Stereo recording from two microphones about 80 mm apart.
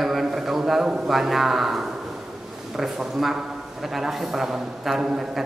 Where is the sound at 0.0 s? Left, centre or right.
Centre.